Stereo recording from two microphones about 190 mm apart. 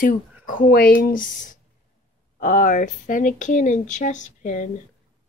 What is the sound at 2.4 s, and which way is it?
Speech, 45° left (ahead or behind).